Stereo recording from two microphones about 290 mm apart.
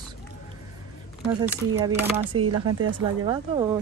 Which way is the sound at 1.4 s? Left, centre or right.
Centre.